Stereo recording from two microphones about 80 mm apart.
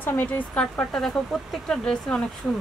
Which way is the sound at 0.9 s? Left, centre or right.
Centre.